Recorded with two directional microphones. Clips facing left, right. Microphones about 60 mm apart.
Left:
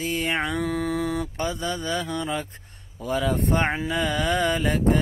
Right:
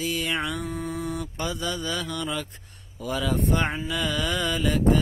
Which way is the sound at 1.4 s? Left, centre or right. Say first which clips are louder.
Left 2 dB; left.